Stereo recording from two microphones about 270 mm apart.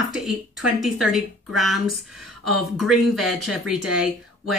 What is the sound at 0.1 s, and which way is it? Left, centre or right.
Speech, centre.